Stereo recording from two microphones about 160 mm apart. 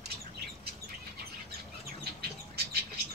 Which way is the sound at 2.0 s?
80° right.